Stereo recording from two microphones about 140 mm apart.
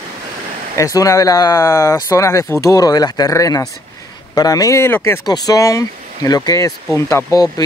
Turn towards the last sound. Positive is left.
turn(degrees=25)  # may be behind; listen again after turning